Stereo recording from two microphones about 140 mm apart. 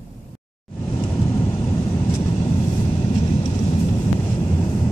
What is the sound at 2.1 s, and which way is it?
Vehicle, 35° left (ahead or behind).